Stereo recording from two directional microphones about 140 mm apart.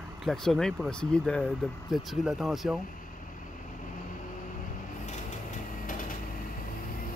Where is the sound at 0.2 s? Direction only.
Centre (ahead or behind).